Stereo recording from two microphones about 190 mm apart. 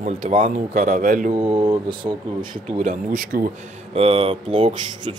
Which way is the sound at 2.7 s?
45° right (ahead or behind).